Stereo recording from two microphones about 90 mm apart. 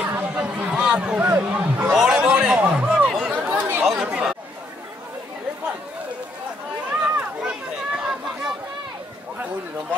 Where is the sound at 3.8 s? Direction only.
10° right (ahead or behind).